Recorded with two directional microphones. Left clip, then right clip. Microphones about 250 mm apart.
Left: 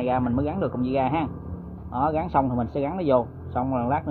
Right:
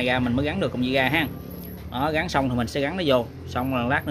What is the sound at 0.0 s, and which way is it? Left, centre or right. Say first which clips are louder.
Speech: right 1 dB; centre.